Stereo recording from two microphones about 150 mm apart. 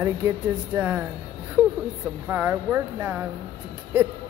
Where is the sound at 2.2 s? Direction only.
15° right (ahead or behind).